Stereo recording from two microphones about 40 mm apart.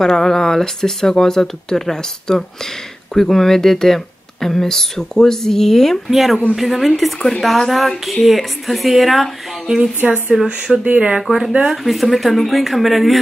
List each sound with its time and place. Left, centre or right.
0.0 s speech: centre
6.0 s speech: centre
10.0 s speech: right
10.3 s speech: centre
11.2 s speech: centre